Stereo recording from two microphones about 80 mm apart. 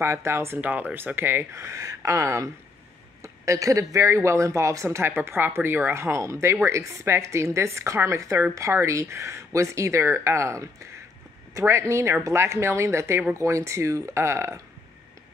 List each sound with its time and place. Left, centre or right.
0.0 s speech: right
0.6 s speech: centre; by 14.6 s right